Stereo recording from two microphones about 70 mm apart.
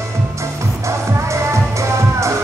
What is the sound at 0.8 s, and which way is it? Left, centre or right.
Music, right.